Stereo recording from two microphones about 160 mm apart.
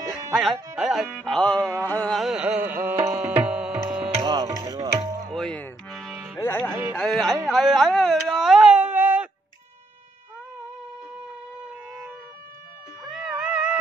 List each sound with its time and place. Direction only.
0.3 s speech: centre (ahead or behind)
0.7 s music: centre (ahead or behind)
4.2 s music: 25° right (ahead or behind)
5.3 s music: 5° left (ahead or behind)
6.4 s music: 15° left (ahead or behind)
7.0 s speech: centre (ahead or behind)
7.4 s a sound: centre (ahead or behind)
13.0 s music: centre (ahead or behind)